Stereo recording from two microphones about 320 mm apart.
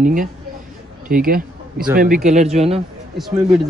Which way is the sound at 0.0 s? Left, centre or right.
Right.